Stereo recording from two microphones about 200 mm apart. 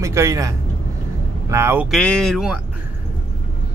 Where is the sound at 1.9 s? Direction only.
5° left (ahead or behind).